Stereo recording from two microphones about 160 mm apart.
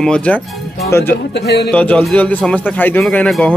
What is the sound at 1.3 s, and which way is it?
Speech, 90° left.